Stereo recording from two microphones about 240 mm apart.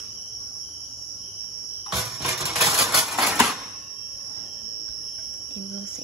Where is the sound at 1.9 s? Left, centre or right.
Centre.